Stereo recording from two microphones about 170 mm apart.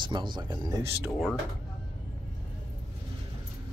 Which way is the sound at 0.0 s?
25° right (ahead or behind).